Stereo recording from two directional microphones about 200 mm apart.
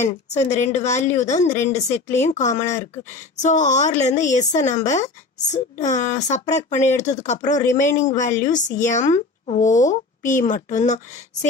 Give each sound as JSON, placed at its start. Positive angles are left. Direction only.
{"t": 0.0, "sound": "a woman's voice", "side_deg": 35}